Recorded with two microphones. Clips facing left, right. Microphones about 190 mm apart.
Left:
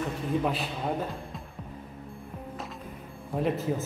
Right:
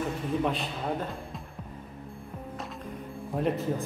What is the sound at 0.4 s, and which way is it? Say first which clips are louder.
Speech: even; 5° left (ahead or behind).